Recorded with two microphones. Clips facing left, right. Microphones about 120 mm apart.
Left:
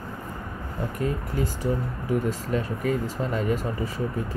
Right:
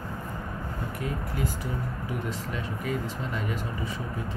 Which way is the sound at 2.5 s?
40° left (ahead or behind).